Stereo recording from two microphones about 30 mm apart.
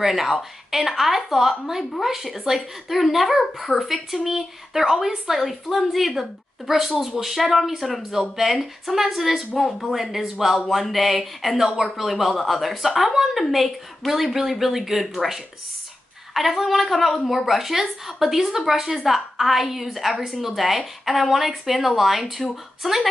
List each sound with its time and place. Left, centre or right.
0.0 s speech: centre
8.9 s speech: centre
11.5 s speech: centre
12.0 s speech: centre